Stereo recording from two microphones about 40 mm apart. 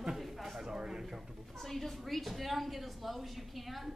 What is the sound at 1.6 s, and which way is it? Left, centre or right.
A woman's voice, centre.